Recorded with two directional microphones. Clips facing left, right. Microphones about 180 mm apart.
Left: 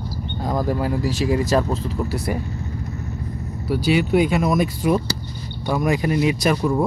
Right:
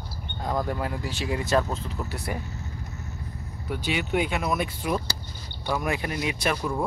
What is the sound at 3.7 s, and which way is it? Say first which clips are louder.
Speech: left 9 dB; 35° left (ahead or behind).